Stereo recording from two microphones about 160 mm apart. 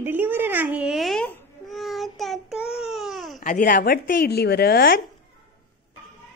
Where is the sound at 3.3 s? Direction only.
55° left (ahead or behind); by 5.0 s 70° left (ahead or behind).